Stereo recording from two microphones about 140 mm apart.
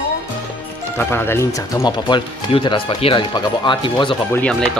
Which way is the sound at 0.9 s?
15° left (ahead or behind).